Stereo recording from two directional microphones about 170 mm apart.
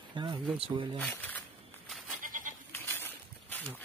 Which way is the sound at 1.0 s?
10° left (ahead or behind).